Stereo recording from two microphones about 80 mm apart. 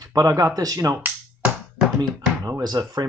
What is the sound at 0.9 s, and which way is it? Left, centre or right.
Finger snapping, centre.